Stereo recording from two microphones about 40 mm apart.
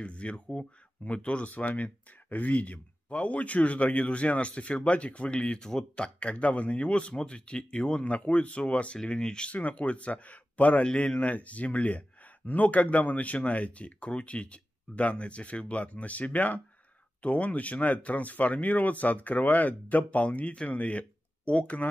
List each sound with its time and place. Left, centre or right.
0.0 s speech: left
1.5 s speech: left
9.5 s speech: left